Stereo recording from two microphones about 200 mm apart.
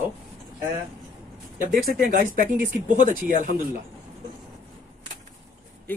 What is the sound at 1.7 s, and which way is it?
Speech, 45° right (ahead or behind).